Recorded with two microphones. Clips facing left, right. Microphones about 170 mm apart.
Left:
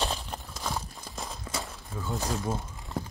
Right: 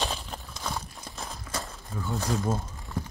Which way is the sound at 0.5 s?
5° left (ahead or behind).